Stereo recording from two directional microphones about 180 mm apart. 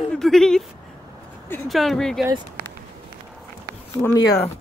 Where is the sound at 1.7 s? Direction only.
Centre (ahead or behind).